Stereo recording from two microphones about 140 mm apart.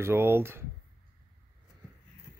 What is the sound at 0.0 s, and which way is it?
Speech, 15° right (ahead or behind).